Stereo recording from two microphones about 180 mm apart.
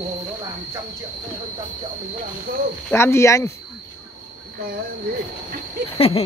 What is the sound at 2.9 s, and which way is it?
Speech, 15° left (ahead or behind).